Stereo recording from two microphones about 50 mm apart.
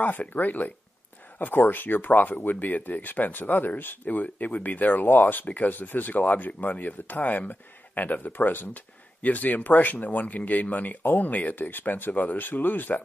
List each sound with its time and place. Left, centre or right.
0.0 s speech: left